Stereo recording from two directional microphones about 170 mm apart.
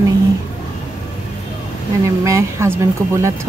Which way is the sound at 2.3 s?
15° right (ahead or behind).